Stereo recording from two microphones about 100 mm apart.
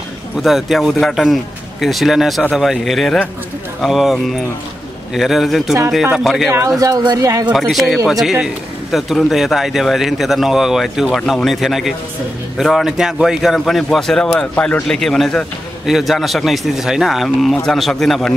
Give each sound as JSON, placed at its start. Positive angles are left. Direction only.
{"t": 0.4, "sound": "a man's voice", "side_deg": -5}
{"t": 6.8, "sound": "speech", "side_deg": -40}
{"t": 7.5, "sound": "a man's voice", "side_deg": 0}
{"t": 14.5, "sound": "a man's voice", "side_deg": 15}